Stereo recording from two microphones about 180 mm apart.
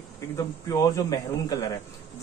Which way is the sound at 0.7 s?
20° left (ahead or behind).